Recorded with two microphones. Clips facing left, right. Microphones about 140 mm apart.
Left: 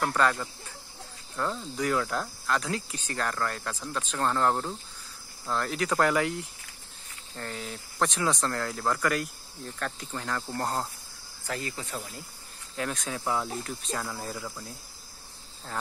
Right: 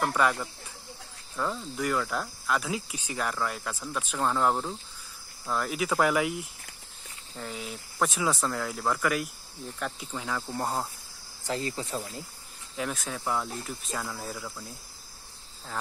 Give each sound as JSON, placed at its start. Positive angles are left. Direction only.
{"t": 0.0, "sound": "speech", "side_deg": -5}
{"t": 1.3, "sound": "cricket", "side_deg": 0}
{"t": 5.5, "sound": "speech", "side_deg": -5}
{"t": 7.3, "sound": "cricket", "side_deg": -5}
{"t": 11.4, "sound": "speech", "side_deg": -25}
{"t": 12.7, "sound": "cricket", "side_deg": -5}